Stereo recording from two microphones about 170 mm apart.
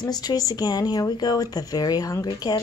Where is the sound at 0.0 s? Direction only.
25° left (ahead or behind).